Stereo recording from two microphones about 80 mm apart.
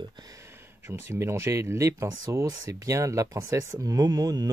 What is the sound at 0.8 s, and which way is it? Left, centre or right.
Speech, right.